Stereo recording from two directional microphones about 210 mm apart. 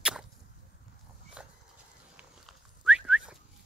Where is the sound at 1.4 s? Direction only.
5° right (ahead or behind).